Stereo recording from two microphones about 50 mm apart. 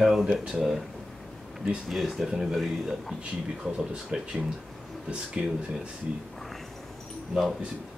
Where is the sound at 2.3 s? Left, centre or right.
Centre.